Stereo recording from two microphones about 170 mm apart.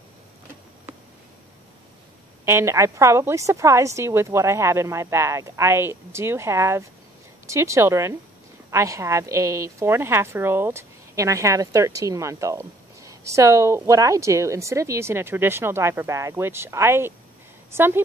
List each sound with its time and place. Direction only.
2.4 s a woman's voice: 15° right (ahead or behind)